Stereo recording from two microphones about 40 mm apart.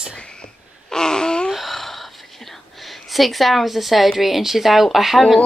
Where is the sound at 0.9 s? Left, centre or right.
Centre.